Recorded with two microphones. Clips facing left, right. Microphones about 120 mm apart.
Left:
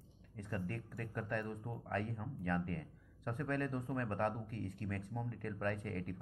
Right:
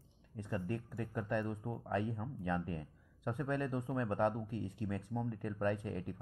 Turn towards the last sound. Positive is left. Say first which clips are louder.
# right 3 dB
turn(degrees=-15)  # may be behind; listen again after turning